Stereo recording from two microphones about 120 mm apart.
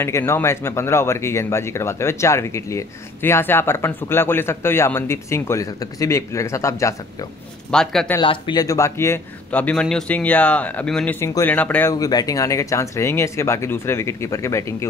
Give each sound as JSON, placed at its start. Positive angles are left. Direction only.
{"t": 0.0, "sound": "speech", "side_deg": 20}
{"t": 7.7, "sound": "speech", "side_deg": 5}
{"t": 8.2, "sound": "speech", "side_deg": 40}
{"t": 9.5, "sound": "speech", "side_deg": 10}
{"t": 11.1, "sound": "speech", "side_deg": 25}
{"t": 11.5, "sound": "speech", "side_deg": 15}
{"t": 11.9, "sound": "speech", "side_deg": 30}